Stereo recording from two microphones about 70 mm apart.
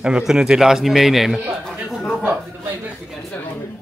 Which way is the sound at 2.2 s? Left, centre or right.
Right.